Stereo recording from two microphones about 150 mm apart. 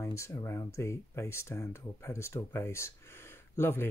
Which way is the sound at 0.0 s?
20° left (ahead or behind).